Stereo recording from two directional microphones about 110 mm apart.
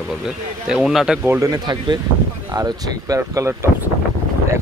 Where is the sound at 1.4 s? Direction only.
35° right (ahead or behind).